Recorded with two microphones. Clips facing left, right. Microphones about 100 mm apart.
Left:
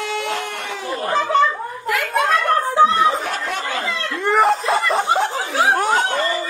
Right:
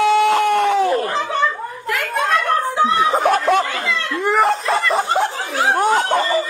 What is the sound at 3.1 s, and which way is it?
Speech, 60° right (ahead or behind).